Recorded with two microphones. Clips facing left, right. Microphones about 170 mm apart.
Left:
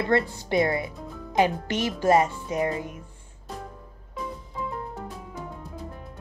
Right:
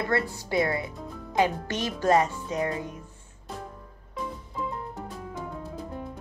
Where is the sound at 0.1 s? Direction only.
20° left (ahead or behind).